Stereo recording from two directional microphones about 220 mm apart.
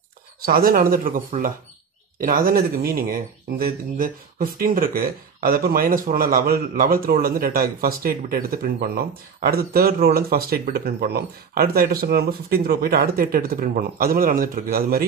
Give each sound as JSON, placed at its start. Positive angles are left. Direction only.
{"t": 0.5, "sound": "speech", "side_deg": -40}